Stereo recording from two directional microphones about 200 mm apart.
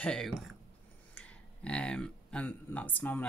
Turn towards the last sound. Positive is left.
turn(degrees=10)  # may be behind; listen again after turning